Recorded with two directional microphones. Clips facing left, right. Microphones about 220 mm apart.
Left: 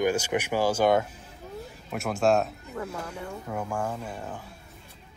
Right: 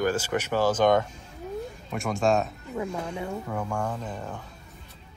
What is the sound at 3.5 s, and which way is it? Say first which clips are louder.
Speech: left 2 dB; 5° left (ahead or behind).